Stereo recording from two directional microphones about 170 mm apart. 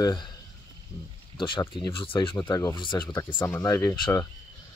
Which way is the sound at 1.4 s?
25° left (ahead or behind).